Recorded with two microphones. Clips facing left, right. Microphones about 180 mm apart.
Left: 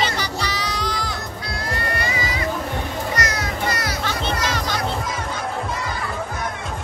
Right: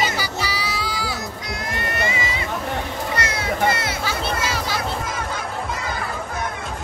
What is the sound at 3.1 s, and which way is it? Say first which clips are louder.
Children playing: right 2 dB; 30° right (ahead or behind).